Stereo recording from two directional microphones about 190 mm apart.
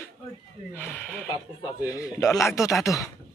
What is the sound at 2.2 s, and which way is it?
Speech, 15° left (ahead or behind).